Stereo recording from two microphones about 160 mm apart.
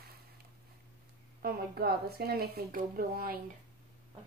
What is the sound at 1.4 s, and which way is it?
A woman's voice, 70° right (ahead or behind).